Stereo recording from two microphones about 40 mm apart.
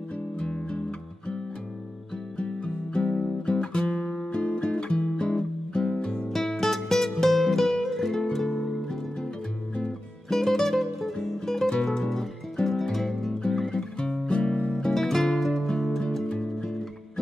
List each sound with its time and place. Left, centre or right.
0.4 s music: left
2.3 s music: left
6.3 s music: centre
10.3 s music: centre
13.7 s music: left
14.7 s music: centre